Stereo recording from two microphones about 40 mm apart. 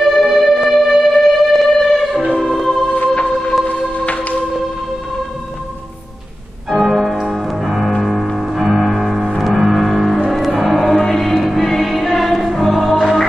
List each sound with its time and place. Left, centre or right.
0.0 s music: centre
2.9 s music: left
6.8 s music: centre